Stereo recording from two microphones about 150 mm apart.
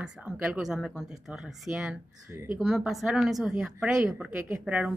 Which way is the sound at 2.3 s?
20° right (ahead or behind).